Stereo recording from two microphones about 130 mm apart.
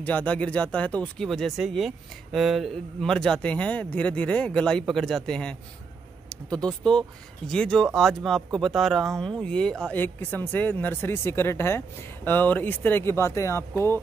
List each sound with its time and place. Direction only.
0.0 s speech: 10° left (ahead or behind)